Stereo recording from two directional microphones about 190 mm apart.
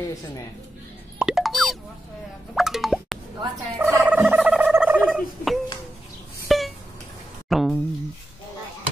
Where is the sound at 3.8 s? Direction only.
10° right (ahead or behind).